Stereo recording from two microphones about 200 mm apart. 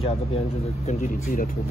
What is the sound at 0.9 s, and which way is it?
Speech, 40° left (ahead or behind).